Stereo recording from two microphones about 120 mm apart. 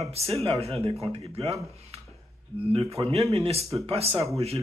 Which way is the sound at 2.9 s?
55° right (ahead or behind).